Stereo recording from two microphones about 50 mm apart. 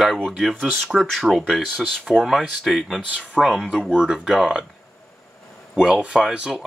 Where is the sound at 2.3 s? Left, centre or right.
Centre.